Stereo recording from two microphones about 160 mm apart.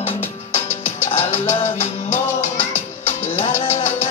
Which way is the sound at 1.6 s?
40° left (ahead or behind).